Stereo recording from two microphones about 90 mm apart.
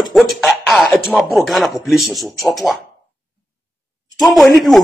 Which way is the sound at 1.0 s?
Centre (ahead or behind).